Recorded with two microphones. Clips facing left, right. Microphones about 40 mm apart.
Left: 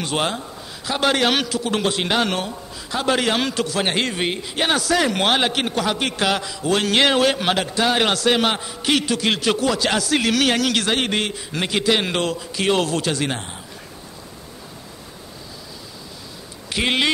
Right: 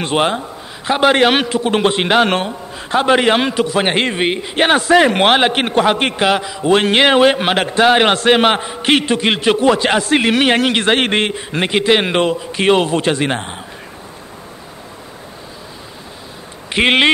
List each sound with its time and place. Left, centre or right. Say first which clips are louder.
0.0 s a man's voice: right 7 dB; right
6.1 s a man's voice: right 6 dB; right
16.8 s speech: right 8 dB; right